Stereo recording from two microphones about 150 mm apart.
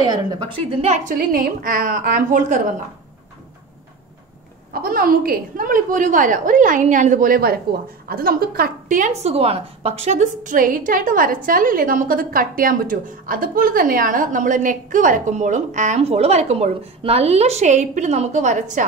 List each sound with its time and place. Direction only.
0.3 s a woman's voice: 35° right (ahead or behind)
1.1 s a woman's voice: 75° right (ahead or behind); by 2.6 s 60° right (ahead or behind)
4.7 s a woman's voice: 75° right (ahead or behind); by 18.9 s 55° right (ahead or behind)